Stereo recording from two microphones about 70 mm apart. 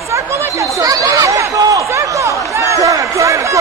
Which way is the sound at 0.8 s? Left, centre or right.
Right.